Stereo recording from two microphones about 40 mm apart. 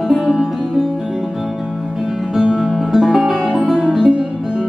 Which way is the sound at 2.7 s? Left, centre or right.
Centre.